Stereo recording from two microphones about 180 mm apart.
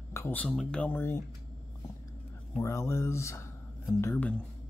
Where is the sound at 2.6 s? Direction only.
15° left (ahead or behind).